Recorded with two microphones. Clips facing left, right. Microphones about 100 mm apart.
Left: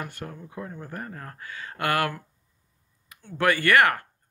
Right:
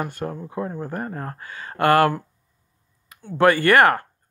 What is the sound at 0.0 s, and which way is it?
Speech, 30° right (ahead or behind).